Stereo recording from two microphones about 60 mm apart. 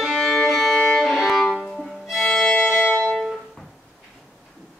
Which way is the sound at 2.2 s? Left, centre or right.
Centre.